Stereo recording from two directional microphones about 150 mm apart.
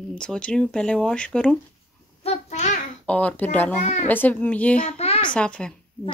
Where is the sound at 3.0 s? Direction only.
10° left (ahead or behind).